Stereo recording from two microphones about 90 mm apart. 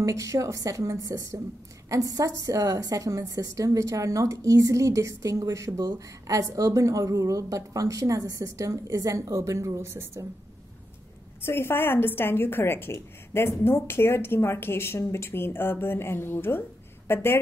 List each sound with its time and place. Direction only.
0.0 s a woman's voice: 35° right (ahead or behind)
11.4 s a woman's voice: 25° left (ahead or behind)